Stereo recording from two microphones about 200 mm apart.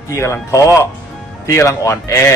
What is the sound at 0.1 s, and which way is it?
A man's voice, 15° left (ahead or behind).